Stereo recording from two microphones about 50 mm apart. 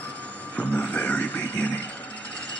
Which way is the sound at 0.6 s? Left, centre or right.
Left.